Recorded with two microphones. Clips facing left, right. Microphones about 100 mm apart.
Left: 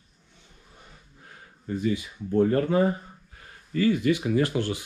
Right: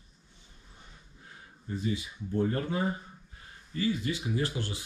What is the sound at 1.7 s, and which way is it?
Speech, 60° left (ahead or behind).